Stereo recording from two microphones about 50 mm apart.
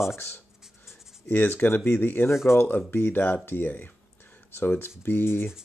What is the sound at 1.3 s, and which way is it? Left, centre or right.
Speech, left.